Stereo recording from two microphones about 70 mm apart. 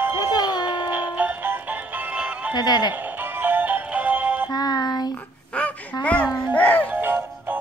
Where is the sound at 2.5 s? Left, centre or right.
Left.